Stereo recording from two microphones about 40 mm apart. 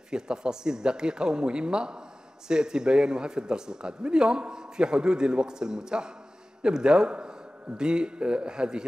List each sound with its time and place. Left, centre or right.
0.1 s speech: centre